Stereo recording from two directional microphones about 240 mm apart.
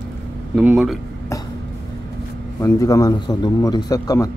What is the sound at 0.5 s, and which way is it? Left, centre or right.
Speech, centre.